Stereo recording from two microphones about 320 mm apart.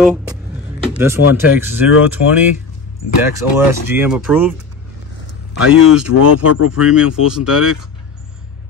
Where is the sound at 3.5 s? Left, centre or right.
Centre.